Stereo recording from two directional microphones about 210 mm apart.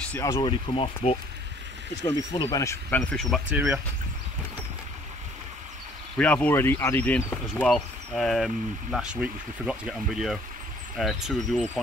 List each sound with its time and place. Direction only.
0.0 s speech: 10° left (ahead or behind)
3.0 s speech: centre (ahead or behind)
6.1 s speech: 5° left (ahead or behind)